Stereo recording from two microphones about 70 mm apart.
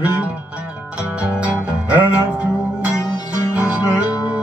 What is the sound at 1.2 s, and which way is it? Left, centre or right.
Music, centre.